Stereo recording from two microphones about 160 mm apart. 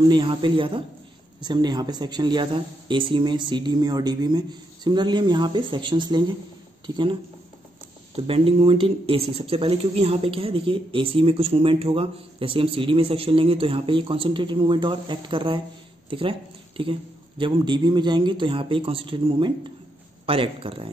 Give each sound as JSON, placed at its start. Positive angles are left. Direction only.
{"t": 0.1, "sound": "speech", "side_deg": -30}
{"t": 8.2, "sound": "speech", "side_deg": -35}